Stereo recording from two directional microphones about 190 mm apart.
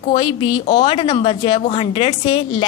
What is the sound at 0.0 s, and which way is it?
A woman's voice, 25° left (ahead or behind).